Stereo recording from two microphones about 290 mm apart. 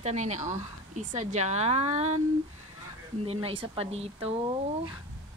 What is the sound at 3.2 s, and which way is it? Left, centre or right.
Speech, centre.